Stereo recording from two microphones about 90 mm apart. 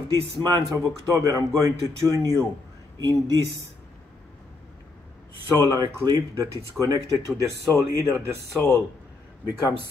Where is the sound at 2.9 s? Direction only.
45° right (ahead or behind).